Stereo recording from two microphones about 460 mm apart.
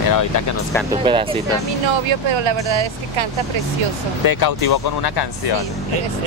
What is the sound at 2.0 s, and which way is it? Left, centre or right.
Speech, right.